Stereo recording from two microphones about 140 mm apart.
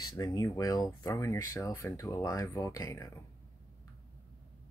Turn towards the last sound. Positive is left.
turn(degrees=25)  # may be behind; listen again after turning